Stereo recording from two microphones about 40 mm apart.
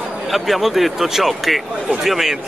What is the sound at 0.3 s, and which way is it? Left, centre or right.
Speech, centre.